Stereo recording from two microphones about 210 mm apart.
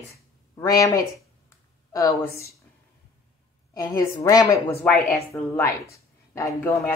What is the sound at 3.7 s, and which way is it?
A woman's voice, 15° left (ahead or behind).